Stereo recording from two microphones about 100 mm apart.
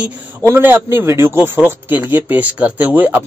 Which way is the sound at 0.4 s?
25° right (ahead or behind).